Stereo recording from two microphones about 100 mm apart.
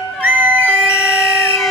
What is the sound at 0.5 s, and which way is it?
Emergency vehicle, 25° left (ahead or behind).